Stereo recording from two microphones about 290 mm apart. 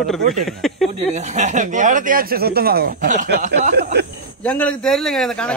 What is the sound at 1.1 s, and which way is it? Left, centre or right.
Speech, right.